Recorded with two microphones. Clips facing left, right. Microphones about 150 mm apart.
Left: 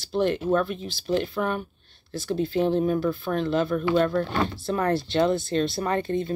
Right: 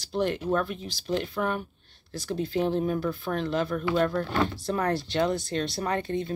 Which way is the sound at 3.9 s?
10° right (ahead or behind).